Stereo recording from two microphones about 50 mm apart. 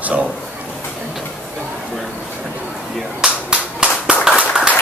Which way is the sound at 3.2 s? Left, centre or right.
Centre.